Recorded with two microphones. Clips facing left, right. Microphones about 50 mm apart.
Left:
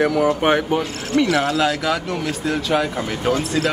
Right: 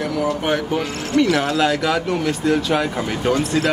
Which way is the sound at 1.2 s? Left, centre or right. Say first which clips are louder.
Right 1 dB; centre.